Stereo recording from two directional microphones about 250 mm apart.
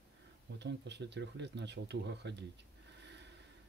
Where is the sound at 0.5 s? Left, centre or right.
Right.